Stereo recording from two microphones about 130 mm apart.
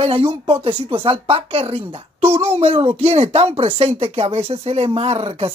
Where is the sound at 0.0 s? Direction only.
45° right (ahead or behind).